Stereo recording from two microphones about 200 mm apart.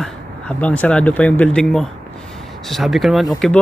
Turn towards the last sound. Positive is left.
turn(degrees=0)  # may be behind; listen again after turning